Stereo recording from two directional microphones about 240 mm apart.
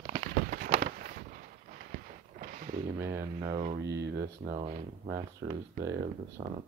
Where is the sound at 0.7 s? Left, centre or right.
Right.